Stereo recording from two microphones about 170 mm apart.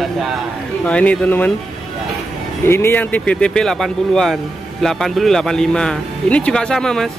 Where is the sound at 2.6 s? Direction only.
15° left (ahead or behind).